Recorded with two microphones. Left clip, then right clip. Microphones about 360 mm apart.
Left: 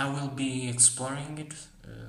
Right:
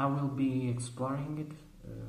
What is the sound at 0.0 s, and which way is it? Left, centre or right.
Speech, left.